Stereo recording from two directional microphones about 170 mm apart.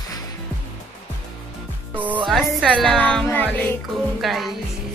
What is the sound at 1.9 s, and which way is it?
Speech, 10° right (ahead or behind).